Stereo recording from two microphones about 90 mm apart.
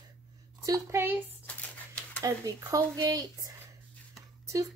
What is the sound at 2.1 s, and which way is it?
A woman's voice, 40° right (ahead or behind).